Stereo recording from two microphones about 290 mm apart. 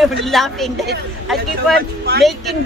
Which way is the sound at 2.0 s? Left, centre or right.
Right.